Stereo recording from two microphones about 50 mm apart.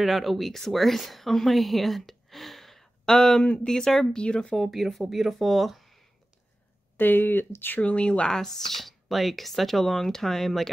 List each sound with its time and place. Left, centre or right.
0.0 s speech: centre; by 4.6 s left
4.6 s speech: centre
7.0 s speech: left
7.8 s speech: left
8.4 s speech: centre